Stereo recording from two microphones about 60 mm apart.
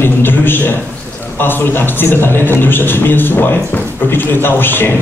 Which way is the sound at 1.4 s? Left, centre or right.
Left.